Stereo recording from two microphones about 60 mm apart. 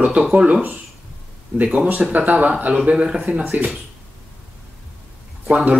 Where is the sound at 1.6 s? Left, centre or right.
Centre.